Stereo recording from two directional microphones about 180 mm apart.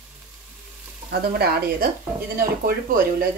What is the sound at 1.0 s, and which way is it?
Speech, 60° right (ahead or behind).